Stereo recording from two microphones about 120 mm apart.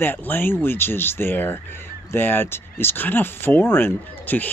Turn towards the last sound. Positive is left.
turn(degrees=15)  # may be behind; listen again after turning